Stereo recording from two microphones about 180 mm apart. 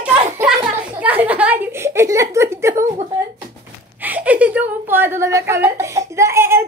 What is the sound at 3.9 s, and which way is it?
A woman's voice, 10° right (ahead or behind).